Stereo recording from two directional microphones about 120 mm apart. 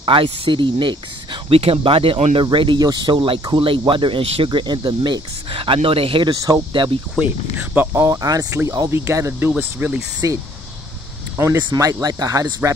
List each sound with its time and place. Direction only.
0.0 s speech: 45° right (ahead or behind)
6.4 s speech: 35° right (ahead or behind)
7.5 s speech: 15° right (ahead or behind)